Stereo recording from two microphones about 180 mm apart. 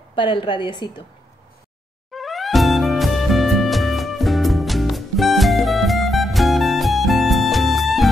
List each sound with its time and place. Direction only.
0.1 s a woman's voice: 25° left (ahead or behind)
2.1 s music: centre (ahead or behind)